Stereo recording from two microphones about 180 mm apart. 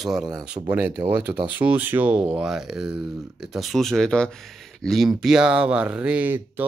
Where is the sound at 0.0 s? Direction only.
5° right (ahead or behind).